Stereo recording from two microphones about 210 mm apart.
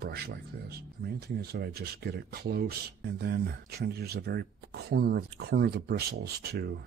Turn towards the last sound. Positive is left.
turn(degrees=-50)  # may be behind; listen again after turning